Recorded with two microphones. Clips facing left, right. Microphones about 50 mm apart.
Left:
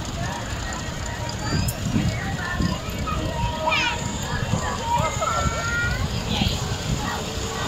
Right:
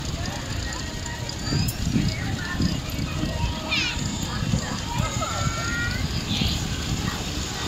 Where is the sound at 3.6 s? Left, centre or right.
Left.